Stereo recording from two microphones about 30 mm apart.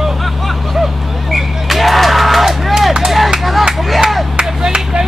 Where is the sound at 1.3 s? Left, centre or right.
Centre.